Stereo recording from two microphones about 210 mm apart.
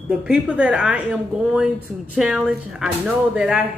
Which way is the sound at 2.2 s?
5° right (ahead or behind).